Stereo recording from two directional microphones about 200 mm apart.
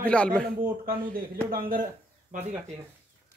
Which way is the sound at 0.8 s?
45° right (ahead or behind).